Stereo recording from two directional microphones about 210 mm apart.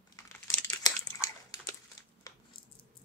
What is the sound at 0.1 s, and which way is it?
Crumpling, 10° left (ahead or behind).